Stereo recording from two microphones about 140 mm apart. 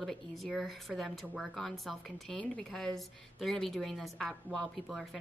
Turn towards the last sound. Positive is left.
turn(degrees=0)  # may be behind; listen again after turning